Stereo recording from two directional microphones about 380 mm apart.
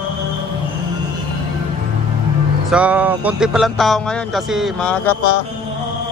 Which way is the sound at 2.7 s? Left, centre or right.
Centre.